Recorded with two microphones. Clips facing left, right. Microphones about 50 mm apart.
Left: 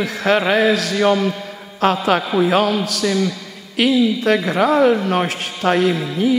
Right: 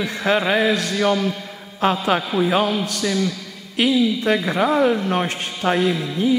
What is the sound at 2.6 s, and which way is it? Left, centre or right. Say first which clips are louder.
A man's voice: left 3 dB; centre.